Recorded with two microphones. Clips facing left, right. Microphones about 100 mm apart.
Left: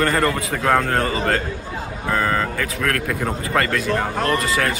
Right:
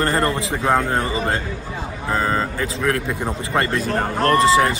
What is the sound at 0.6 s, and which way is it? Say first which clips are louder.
Speech: left 1 dB; 15° right (ahead or behind).